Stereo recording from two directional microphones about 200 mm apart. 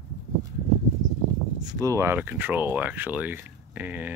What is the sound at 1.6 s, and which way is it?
Speech, 15° right (ahead or behind).